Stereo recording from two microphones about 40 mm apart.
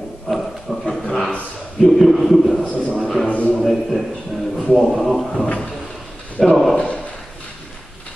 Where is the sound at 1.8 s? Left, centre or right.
Centre.